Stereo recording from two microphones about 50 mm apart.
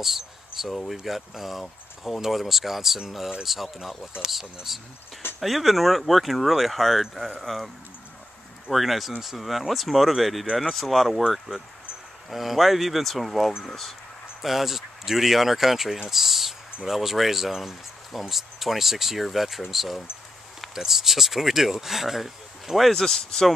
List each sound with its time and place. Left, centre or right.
0.0 s a sound: centre
0.9 s speech: centre
22.8 s speech: centre